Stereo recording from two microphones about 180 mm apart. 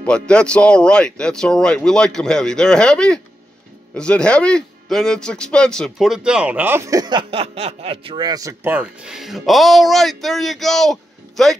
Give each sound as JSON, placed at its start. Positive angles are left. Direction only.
{"t": 0.0, "sound": "a man's voice", "side_deg": 5}